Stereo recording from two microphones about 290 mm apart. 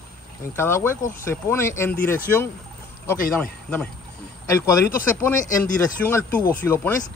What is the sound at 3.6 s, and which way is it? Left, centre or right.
Speech, centre.